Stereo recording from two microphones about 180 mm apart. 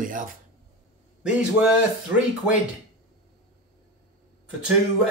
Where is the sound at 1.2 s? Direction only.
5° right (ahead or behind).